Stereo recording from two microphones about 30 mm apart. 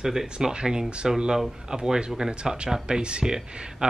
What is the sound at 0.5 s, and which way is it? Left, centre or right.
Speech, right.